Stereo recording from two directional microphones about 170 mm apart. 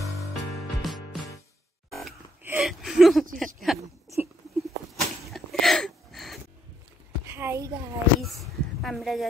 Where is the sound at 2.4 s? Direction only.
5° right (ahead or behind).